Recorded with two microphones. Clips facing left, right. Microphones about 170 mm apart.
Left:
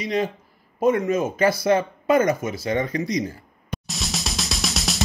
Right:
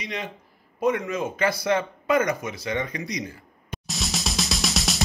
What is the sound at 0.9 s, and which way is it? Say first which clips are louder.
Speech: left 6 dB; 30° left (ahead or behind).